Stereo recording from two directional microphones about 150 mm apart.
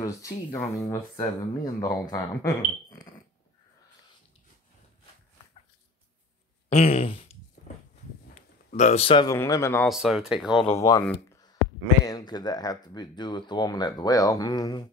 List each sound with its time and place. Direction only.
0.0 s speech: 20° left (ahead or behind)
6.7 s a sound: 40° left (ahead or behind)
9.3 s speech: 20° left (ahead or behind)
9.8 s speech: centre (ahead or behind)
10.8 s speech: 20° left (ahead or behind)